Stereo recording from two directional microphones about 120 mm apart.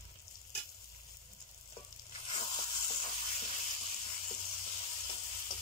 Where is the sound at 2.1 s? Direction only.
50° left (ahead or behind).